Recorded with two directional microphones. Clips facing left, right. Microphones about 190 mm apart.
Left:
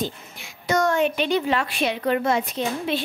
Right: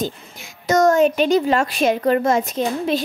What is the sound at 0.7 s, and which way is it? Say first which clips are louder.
A woman's voice: right 6 dB; 45° right (ahead or behind).